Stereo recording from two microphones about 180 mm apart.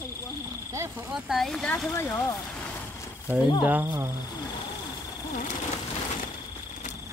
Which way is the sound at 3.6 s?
10° right (ahead or behind).